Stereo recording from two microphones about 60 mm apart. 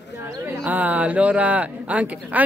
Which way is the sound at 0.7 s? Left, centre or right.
Right.